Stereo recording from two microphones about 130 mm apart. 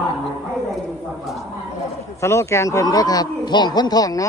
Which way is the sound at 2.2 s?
20° left (ahead or behind).